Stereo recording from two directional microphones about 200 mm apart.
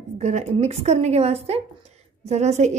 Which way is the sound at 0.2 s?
35° right (ahead or behind).